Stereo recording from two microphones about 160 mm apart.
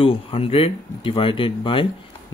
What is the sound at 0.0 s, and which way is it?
Speech, 35° left (ahead or behind).